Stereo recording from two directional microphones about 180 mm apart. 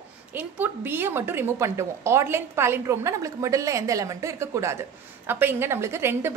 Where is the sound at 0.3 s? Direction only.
10° right (ahead or behind).